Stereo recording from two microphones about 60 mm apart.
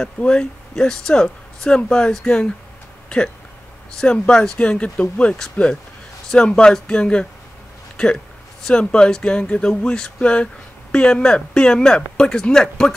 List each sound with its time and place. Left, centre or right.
0.0 s speech: centre
3.9 s speech: centre
8.6 s speech: centre